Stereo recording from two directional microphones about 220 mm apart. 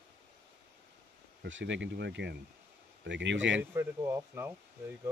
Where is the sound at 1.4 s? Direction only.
55° right (ahead or behind).